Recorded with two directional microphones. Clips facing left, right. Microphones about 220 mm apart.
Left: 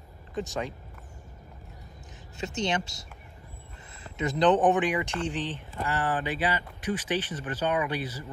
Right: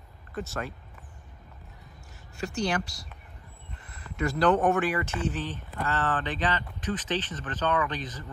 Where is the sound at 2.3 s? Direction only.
20° left (ahead or behind).